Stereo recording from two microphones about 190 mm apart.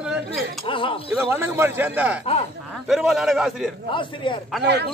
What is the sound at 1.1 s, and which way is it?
Speech, 10° right (ahead or behind).